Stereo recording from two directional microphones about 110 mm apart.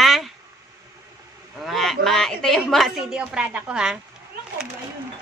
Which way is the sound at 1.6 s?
Centre (ahead or behind).